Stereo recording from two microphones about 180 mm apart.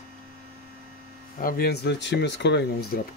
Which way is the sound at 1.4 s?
65° left (ahead or behind).